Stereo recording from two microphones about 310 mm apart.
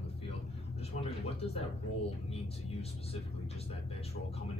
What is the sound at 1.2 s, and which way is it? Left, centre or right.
Speech, centre.